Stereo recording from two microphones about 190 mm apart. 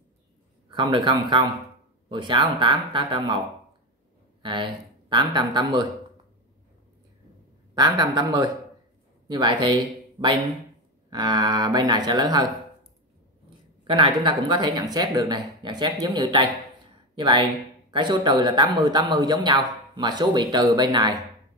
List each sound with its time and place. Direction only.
0.7 s speech: 25° right (ahead or behind)
4.4 s speech: 25° right (ahead or behind)
7.7 s speech: 20° right (ahead or behind)
11.1 s speech: 20° right (ahead or behind)
13.8 s speech: 25° right (ahead or behind)